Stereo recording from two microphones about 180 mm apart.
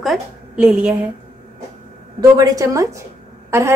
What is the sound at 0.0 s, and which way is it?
Speech, centre (ahead or behind).